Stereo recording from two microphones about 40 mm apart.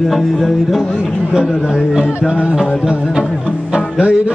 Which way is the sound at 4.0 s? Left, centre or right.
Right.